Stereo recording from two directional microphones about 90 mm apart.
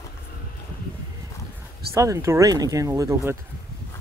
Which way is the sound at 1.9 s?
35° right (ahead or behind).